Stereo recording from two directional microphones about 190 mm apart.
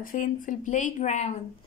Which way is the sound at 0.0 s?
45° left (ahead or behind).